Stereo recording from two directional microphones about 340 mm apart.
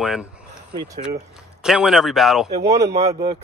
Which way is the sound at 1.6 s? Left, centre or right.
Centre.